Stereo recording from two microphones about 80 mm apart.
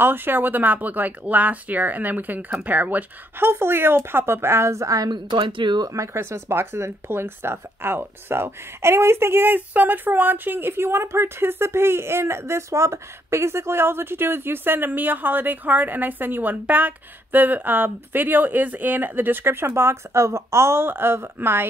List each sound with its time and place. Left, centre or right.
0.0 s speech: right
5.1 s speech: right
5.9 s speech: right